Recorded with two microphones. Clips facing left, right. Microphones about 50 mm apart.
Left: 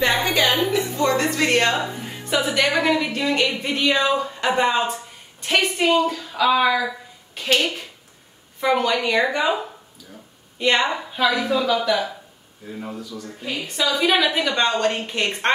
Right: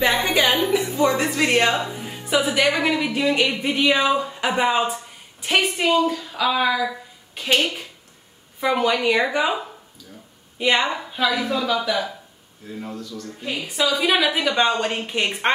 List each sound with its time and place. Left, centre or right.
0.0 s a woman's voice: centre
0.3 s a sound: centre
1.8 s a woman's voice: centre
10.6 s speech: centre
13.7 s speech: centre